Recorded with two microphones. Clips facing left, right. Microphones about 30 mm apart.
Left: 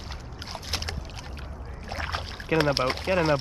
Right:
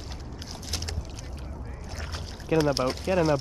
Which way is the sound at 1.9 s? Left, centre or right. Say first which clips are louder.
Left 8 dB; left.